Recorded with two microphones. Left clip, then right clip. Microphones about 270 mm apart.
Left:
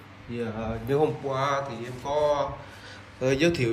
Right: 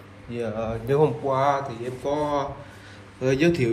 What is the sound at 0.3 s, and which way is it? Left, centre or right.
A man's voice, centre.